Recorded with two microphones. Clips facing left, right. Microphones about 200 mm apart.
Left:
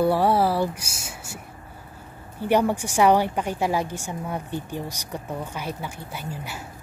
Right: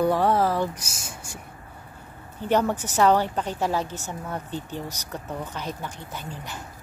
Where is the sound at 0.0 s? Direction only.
10° left (ahead or behind).